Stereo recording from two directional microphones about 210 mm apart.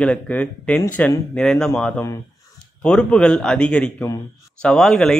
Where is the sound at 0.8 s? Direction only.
15° left (ahead or behind).